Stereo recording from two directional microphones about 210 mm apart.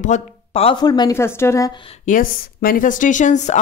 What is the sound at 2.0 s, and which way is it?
Speech, 40° left (ahead or behind).